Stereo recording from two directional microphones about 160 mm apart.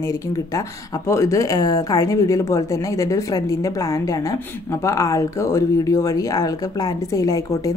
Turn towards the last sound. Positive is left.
turn(degrees=20)  # may be behind; listen again after turning